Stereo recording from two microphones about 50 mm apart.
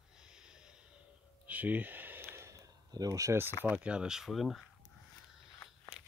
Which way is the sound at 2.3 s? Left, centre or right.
Right.